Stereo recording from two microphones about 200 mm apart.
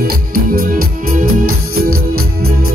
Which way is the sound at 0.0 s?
45° right (ahead or behind).